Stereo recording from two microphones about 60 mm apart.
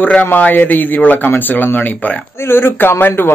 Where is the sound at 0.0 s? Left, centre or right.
Left.